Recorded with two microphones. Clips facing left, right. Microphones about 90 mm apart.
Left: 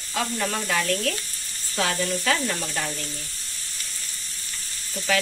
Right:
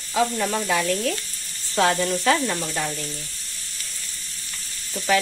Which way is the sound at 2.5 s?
10° right (ahead or behind).